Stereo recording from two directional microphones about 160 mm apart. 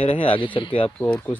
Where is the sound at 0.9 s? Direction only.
10° left (ahead or behind).